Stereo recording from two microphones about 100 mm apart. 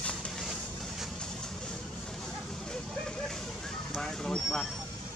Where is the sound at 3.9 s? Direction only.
5° left (ahead or behind).